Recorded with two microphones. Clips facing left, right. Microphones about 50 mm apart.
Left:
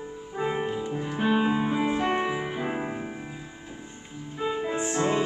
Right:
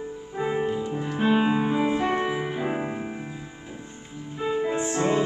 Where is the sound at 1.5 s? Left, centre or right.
Centre.